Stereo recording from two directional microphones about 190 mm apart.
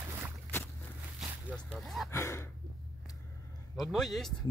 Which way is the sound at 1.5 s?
Centre (ahead or behind).